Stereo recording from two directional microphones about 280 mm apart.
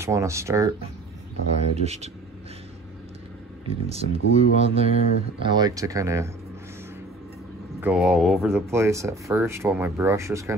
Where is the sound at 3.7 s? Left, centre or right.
Right.